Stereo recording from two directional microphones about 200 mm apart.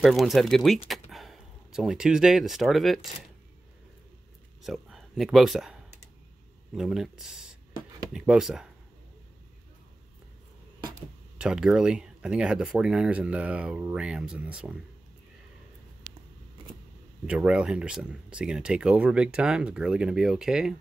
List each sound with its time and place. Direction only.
0.0 s speech: centre (ahead or behind)
4.6 s speech: centre (ahead or behind)
11.3 s speech: 5° right (ahead or behind)
17.3 s speech: 5° right (ahead or behind)